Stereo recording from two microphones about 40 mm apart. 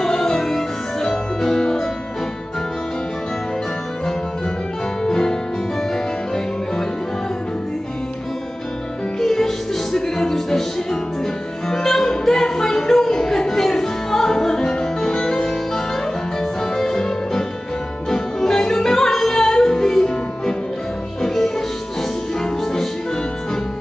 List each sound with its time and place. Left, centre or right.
0.0 s music: centre
5.0 s music: centre
9.2 s music: centre